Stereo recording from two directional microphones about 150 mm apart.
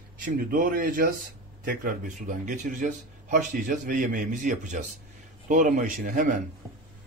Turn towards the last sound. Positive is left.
turn(degrees=-60)  # may be behind; listen again after turning